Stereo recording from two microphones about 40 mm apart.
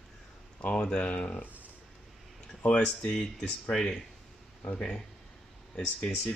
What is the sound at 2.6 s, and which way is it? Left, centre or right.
Speech, left.